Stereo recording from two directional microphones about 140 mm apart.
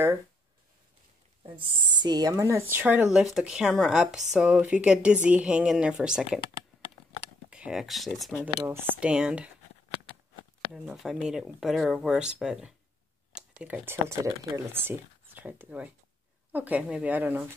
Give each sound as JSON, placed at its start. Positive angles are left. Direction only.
{"t": 1.4, "sound": "a woman's voice", "side_deg": -35}
{"t": 7.4, "sound": "speech", "side_deg": -5}
{"t": 8.6, "sound": "a woman's voice", "side_deg": -15}
{"t": 10.7, "sound": "a woman's voice", "side_deg": -5}